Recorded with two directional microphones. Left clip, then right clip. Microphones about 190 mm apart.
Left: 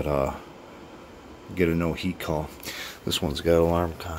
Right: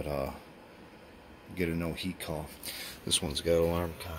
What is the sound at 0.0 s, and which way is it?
Speech, 10° left (ahead or behind).